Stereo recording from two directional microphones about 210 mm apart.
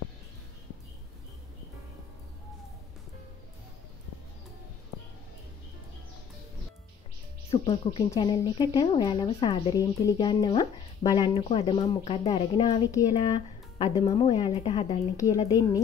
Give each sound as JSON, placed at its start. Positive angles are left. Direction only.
{"t": 7.5, "sound": "a woman's voice", "side_deg": 25}